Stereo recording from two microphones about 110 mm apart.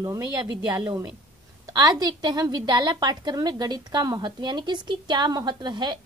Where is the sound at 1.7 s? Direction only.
35° right (ahead or behind).